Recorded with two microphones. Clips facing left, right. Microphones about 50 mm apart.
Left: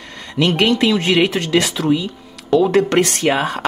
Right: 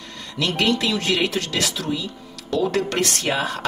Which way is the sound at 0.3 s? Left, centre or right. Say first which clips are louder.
Left 6 dB; left.